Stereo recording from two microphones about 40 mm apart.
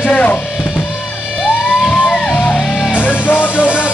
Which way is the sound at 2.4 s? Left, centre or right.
Left.